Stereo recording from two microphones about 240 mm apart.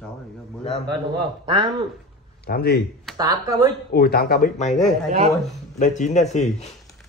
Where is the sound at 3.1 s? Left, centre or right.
Centre.